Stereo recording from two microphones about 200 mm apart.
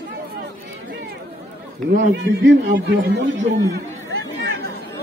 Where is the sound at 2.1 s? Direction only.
65° right (ahead or behind).